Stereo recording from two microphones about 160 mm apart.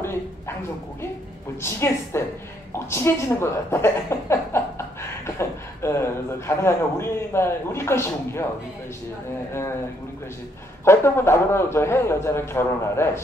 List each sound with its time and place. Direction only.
0.0 s a sound: 15° left (ahead or behind)
1.6 s speech: 15° left (ahead or behind)
9.5 s speech: 15° left (ahead or behind)
10.9 s speech: 15° left (ahead or behind)